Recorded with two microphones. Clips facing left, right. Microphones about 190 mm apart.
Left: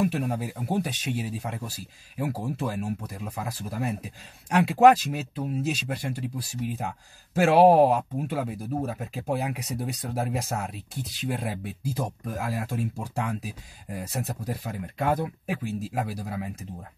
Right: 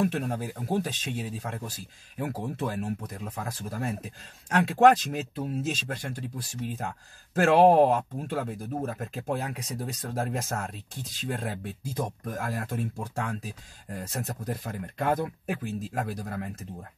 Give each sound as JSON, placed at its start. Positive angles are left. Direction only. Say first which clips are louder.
{"t": 0.0, "sound": "speech", "louder": "left 1 dB", "side_deg": 5}